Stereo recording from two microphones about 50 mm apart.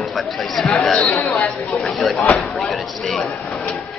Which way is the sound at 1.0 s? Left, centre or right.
Left.